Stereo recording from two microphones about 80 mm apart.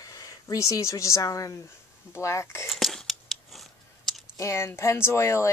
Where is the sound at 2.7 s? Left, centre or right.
Centre.